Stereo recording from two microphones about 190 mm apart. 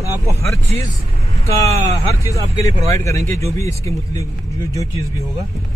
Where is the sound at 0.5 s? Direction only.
15° left (ahead or behind).